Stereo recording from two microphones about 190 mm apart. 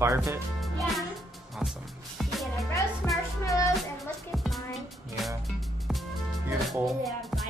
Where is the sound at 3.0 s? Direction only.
10° left (ahead or behind).